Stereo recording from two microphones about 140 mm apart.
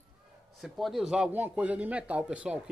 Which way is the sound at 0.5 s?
Centre (ahead or behind).